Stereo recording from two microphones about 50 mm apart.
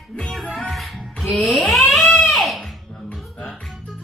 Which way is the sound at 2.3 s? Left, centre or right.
Centre.